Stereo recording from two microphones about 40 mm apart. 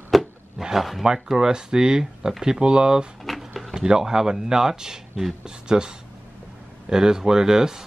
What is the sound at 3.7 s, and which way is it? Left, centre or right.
Speech, centre.